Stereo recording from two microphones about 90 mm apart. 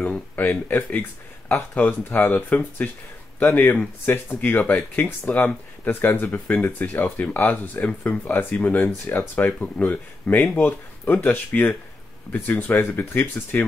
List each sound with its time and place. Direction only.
0.4 s speech: 20° left (ahead or behind)